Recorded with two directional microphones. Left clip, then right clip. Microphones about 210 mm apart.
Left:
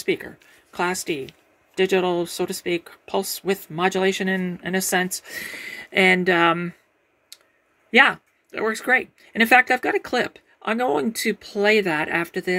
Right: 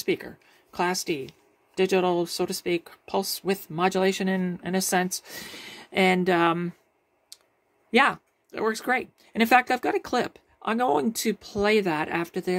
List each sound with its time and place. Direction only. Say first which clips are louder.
0.0 s speech: left 3 dB; 5° right (ahead or behind)
7.9 s speech: left 5 dB; centre (ahead or behind)